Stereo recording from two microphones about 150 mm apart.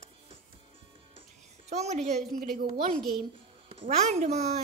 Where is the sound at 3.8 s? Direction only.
45° right (ahead or behind).